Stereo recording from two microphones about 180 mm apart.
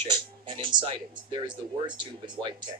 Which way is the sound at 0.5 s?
25° right (ahead or behind).